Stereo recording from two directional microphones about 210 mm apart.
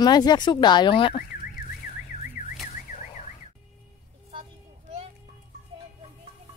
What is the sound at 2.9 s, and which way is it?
Car alarm, 35° left (ahead or behind).